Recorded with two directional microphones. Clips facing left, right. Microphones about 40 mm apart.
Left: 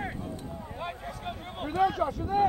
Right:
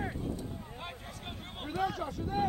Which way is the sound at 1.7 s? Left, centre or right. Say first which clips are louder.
Left 7 dB; left.